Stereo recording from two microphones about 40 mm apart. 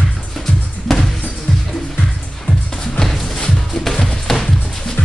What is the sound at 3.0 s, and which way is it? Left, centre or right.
Music, centre.